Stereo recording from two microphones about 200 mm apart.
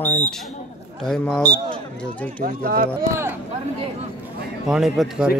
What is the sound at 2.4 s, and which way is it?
Speech, 45° right (ahead or behind).